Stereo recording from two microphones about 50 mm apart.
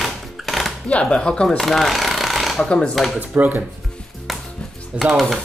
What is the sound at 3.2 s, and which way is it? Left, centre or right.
Speech, right.